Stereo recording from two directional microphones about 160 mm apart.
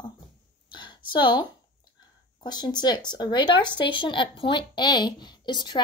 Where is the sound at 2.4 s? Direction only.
25° left (ahead or behind).